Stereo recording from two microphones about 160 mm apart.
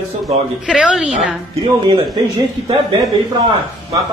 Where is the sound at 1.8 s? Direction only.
25° right (ahead or behind).